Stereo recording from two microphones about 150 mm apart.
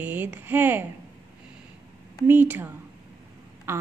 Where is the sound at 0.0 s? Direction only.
15° right (ahead or behind).